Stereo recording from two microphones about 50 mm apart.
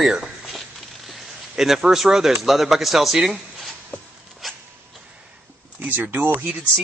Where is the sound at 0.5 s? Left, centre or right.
Centre.